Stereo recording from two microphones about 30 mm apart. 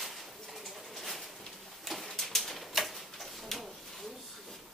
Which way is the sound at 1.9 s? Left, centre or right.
Centre.